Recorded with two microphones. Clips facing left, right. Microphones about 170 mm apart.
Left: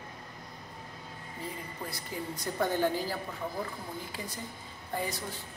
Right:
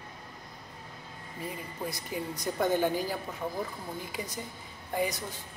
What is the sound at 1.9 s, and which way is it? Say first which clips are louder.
A woman's voice: right 4 dB; 20° right (ahead or behind).